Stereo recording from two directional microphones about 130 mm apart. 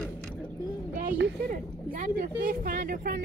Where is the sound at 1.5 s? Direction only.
90° right.